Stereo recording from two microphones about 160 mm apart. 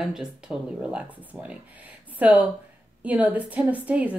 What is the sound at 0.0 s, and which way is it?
Speech, 5° right (ahead or behind).